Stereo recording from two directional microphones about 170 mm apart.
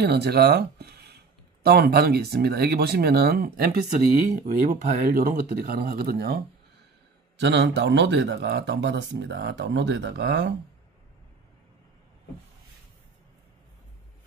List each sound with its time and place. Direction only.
0.0 s speech: 70° right (ahead or behind)
7.3 s speech: 90° right